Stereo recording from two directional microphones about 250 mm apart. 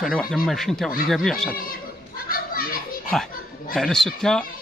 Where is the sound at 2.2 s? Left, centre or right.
Left.